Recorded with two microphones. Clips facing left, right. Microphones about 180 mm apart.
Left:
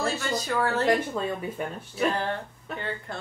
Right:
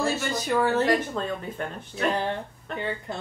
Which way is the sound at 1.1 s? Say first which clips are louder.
Left 1 dB; 10° left (ahead or behind).